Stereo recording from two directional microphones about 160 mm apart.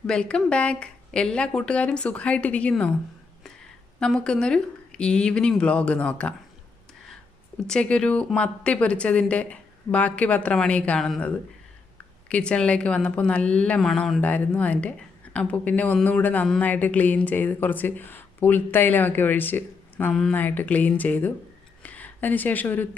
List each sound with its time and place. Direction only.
0.0 s speech: 5° left (ahead or behind)
4.0 s speech: 5° left (ahead or behind)
7.6 s speech: 5° left (ahead or behind)